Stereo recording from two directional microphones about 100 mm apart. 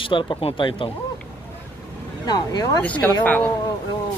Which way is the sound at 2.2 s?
45° left (ahead or behind).